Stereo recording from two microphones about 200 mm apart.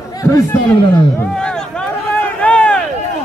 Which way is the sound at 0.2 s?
15° left (ahead or behind).